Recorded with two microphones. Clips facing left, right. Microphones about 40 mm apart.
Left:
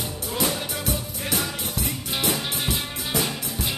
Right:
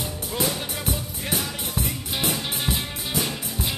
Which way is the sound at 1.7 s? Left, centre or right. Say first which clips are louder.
Even; centre.